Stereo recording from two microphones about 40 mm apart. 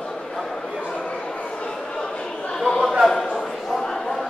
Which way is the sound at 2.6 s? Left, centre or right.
Centre.